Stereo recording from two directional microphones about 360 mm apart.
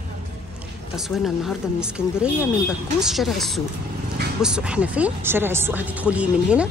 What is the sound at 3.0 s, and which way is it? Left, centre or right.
Speech, centre.